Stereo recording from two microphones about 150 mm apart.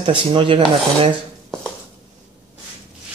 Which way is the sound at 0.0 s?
35° right (ahead or behind).